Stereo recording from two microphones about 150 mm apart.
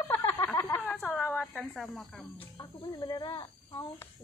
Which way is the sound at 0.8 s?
10° left (ahead or behind).